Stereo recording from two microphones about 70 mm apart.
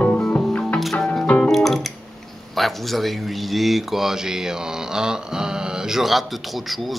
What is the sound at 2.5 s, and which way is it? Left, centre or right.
A man's voice, centre.